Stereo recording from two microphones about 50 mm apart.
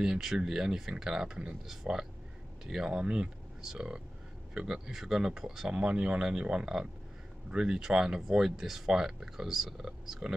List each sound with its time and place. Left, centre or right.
0.0 s speech: centre